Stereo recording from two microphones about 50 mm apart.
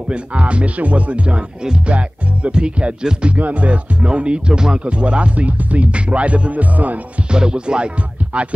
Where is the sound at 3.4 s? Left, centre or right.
Right.